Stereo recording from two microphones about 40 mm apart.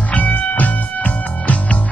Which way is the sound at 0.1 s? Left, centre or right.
Left.